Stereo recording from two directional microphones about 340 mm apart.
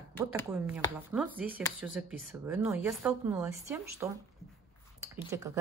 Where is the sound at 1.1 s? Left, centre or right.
Centre.